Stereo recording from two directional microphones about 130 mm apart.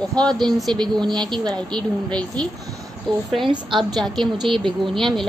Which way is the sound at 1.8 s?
5° left (ahead or behind).